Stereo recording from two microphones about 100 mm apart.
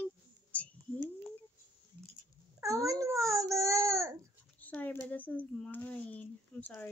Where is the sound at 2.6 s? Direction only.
35° right (ahead or behind).